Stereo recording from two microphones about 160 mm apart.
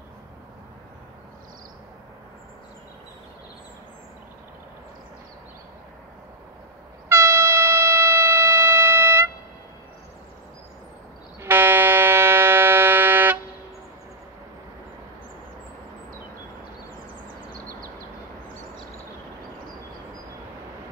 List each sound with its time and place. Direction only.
7.1 s train: 15° right (ahead or behind)
11.4 s civil defense siren: 15° right (ahead or behind)
17.5 s a sound: 60° right (ahead or behind)